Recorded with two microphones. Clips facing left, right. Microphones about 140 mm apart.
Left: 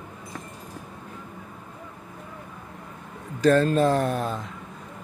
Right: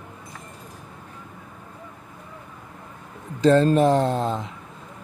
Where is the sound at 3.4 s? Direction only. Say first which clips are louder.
Right 3 dB; 25° right (ahead or behind).